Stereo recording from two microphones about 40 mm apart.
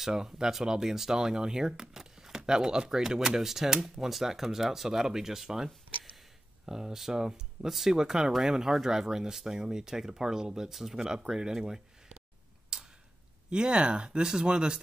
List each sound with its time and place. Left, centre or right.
0.0 s speech: centre
12.7 s tick-tock: right
13.5 s speech: right